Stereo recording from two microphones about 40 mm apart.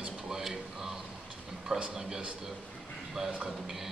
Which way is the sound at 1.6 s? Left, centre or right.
Right.